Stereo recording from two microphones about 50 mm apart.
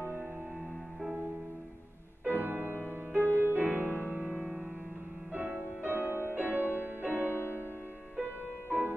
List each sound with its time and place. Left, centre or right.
2.2 s music: right
3.3 s music: left
3.5 s music: right
4.4 s music: centre
5.3 s music: right
5.9 s music: right
7.2 s music: left
8.2 s music: right